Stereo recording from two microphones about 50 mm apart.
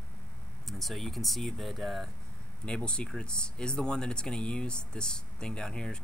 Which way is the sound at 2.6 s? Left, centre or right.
Centre.